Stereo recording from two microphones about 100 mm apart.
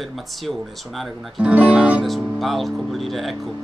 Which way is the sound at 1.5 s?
10° right (ahead or behind).